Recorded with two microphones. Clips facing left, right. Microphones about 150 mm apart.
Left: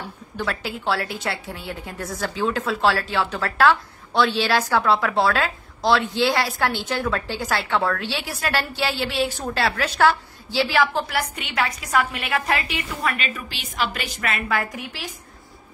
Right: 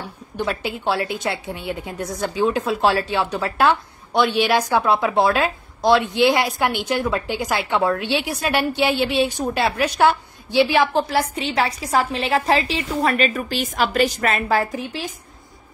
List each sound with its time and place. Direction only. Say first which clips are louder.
0.4 s a woman's voice: right 3 dB; 20° right (ahead or behind)